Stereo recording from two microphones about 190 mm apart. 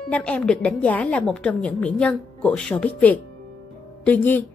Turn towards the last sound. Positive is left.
turn(degrees=10)  # may be behind; listen again after turning